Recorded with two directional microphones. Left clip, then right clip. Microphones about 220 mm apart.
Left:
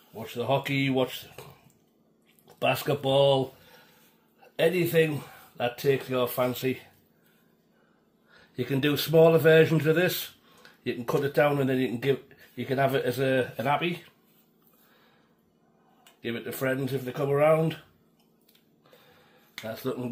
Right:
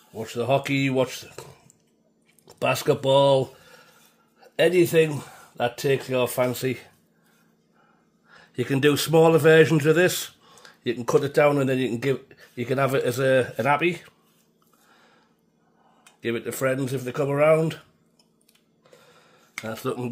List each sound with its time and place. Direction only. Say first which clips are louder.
0.1 s a man's voice: right 4 dB; 50° right (ahead or behind)
2.4 s a man's voice: right 4 dB; 50° right (ahead or behind)
8.3 s a man's voice: right 4 dB; 50° right (ahead or behind)
16.2 s a man's voice: right 6 dB; 50° right (ahead or behind)
19.7 s a man's voice: right 3 dB; 55° right (ahead or behind)